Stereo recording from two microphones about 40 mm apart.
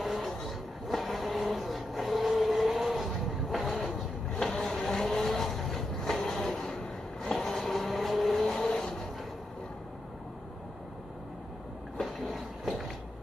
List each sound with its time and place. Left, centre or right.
0.0 s vehicle: centre
4.3 s vehicle: centre
8.5 s vehicle: centre
12.0 s a sound: centre